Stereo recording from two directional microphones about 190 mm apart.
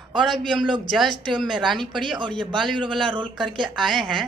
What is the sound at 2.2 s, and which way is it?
Speech, 25° right (ahead or behind).